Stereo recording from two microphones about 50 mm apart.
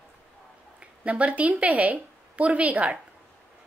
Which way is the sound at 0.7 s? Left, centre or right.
Right.